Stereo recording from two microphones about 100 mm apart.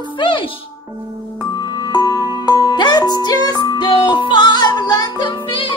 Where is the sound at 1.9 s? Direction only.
40° left (ahead or behind).